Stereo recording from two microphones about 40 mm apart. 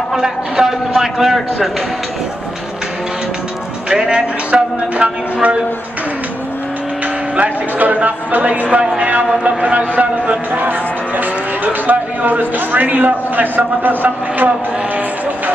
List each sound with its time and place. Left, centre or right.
0.2 s a man's voice: centre
3.9 s speech: right
7.3 s speech: right
10.5 s speech: right